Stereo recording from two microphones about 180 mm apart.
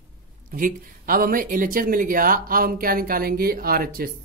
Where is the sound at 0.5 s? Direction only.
50° right (ahead or behind).